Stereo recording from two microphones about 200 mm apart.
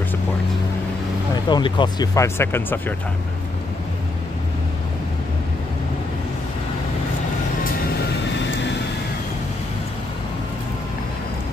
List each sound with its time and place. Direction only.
1.3 s speech: 20° left (ahead or behind)